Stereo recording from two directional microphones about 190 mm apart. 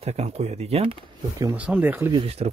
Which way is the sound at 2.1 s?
30° right (ahead or behind).